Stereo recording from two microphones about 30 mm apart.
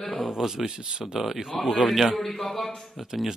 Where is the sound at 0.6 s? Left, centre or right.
Right.